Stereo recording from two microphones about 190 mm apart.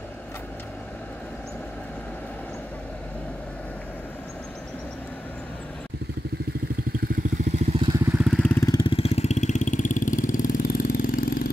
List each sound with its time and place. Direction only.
7.1 s vehicle: 35° right (ahead or behind)
8.2 s vehicle: centre (ahead or behind)
8.5 s vehicle: 15° left (ahead or behind)
8.9 s vehicle: 35° left (ahead or behind)